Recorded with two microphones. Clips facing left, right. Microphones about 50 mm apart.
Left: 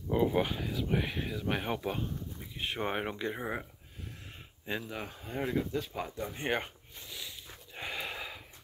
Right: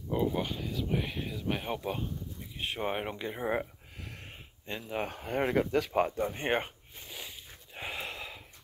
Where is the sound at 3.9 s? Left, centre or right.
Right.